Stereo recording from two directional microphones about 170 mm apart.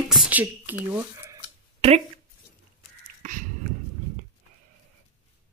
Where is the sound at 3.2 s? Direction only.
50° right (ahead or behind).